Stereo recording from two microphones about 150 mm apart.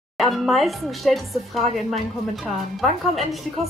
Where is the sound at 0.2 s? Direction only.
Centre (ahead or behind).